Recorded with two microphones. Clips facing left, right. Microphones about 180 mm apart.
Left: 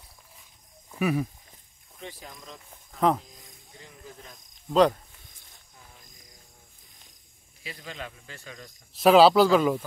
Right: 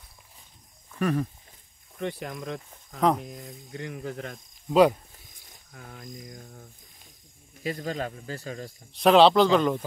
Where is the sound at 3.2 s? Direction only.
65° right (ahead or behind).